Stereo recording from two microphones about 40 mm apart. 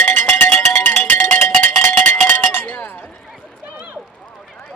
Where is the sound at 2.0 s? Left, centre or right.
Left.